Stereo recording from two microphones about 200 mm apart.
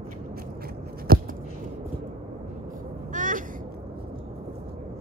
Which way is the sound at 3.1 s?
40° right (ahead or behind).